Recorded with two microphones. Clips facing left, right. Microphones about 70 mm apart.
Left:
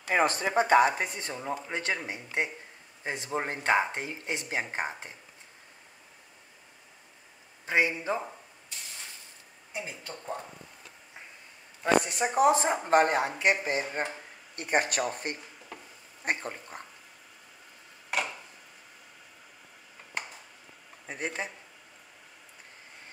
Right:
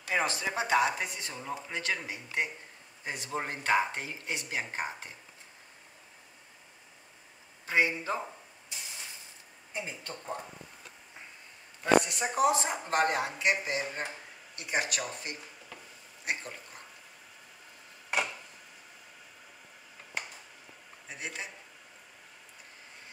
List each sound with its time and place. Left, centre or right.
0.1 s speech: left
7.6 s speech: left
9.8 s speech: centre
11.8 s speech: left
21.1 s speech: left